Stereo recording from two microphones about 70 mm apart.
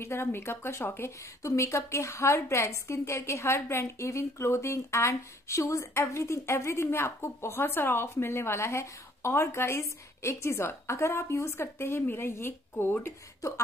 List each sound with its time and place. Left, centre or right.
0.0 s a woman's voice: left
1.2 s a woman's voice: left